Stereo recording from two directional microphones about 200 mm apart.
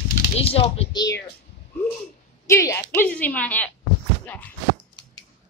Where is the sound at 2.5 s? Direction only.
15° left (ahead or behind).